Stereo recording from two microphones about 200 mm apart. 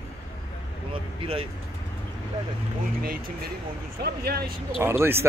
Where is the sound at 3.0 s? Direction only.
45° right (ahead or behind).